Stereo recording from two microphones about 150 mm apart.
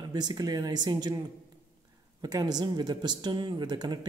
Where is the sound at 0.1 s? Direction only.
25° right (ahead or behind).